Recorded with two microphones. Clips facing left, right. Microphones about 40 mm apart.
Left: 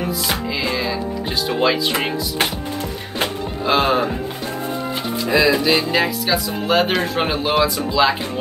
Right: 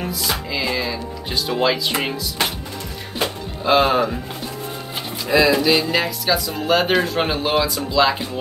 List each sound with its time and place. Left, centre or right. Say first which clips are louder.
1.6 s speech: left 2 dB; centre
2.0 s music: left 2 dB; left
3.6 s speech: right 1 dB; centre
5.3 s speech: right 1 dB; centre